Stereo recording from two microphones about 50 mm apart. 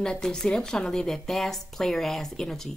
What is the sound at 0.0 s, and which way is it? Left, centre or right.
Speech, centre.